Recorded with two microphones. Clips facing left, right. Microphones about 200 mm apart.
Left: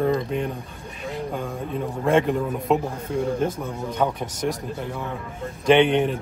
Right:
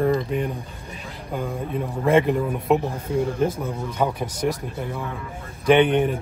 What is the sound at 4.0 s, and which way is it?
Speech, 5° right (ahead or behind).